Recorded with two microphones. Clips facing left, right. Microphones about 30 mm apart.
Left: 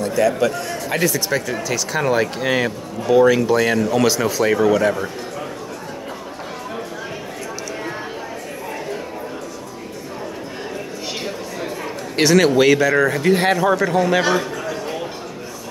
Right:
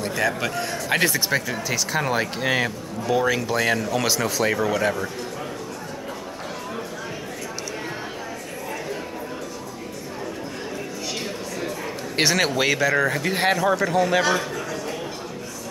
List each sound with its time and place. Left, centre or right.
0.8 s speech: right
1.3 s speech: centre
12.2 s speech: centre
14.2 s a sound: centre